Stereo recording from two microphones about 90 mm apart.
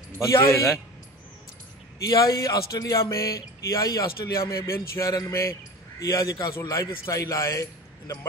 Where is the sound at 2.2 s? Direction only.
45° left (ahead or behind).